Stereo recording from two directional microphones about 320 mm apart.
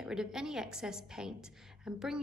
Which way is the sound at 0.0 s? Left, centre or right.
Centre.